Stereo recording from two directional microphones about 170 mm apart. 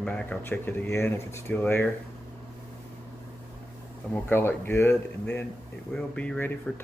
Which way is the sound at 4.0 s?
10° left (ahead or behind).